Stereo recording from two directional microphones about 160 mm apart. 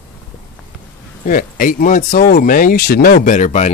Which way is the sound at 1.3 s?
60° left (ahead or behind).